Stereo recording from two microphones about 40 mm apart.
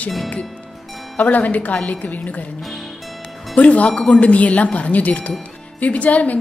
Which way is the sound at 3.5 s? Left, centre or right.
Left.